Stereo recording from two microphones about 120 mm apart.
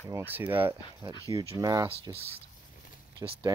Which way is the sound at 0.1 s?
20° right (ahead or behind).